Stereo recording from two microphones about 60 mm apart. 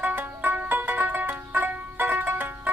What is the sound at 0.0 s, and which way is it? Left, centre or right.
Banjo, right.